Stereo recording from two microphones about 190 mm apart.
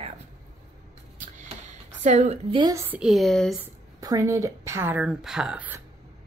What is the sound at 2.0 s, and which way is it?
Speech, 40° right (ahead or behind).